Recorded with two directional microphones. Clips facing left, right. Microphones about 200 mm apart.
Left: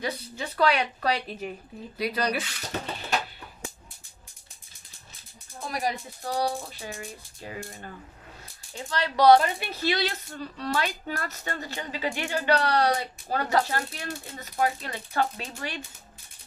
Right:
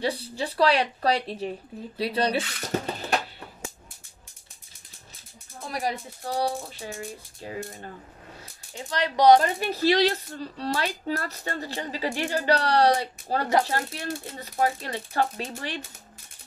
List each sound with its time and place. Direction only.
0.0 s speech: 30° right (ahead or behind)
5.7 s speech: 30° right (ahead or behind)
8.7 s speech: 15° right (ahead or behind)
9.4 s speech: 40° right (ahead or behind)